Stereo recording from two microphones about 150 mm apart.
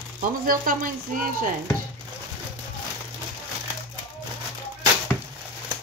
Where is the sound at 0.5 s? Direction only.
65° right (ahead or behind).